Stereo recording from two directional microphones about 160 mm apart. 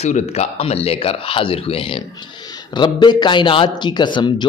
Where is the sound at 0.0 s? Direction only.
45° left (ahead or behind).